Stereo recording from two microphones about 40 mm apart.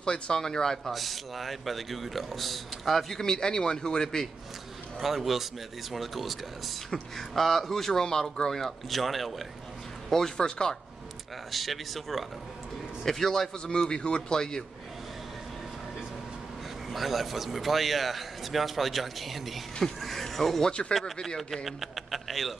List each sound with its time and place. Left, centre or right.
0.0 s speech: centre
0.9 s a man's voice: centre
3.2 s speech: centre
5.0 s a man's voice: centre
11.5 s a man's voice: centre
13.7 s speech: left
16.9 s a man's voice: centre
21.0 s speech: left
21.6 s a man's voice: centre